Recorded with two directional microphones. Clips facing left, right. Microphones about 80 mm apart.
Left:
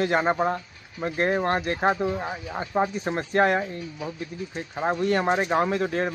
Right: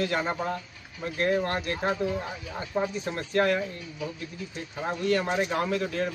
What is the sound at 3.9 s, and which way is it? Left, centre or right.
A man's voice, left.